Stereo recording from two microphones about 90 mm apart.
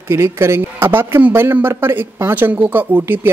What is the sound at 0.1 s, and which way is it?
Speech, 30° right (ahead or behind).